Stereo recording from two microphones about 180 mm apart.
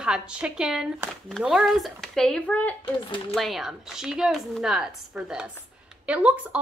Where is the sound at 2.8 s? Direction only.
25° left (ahead or behind).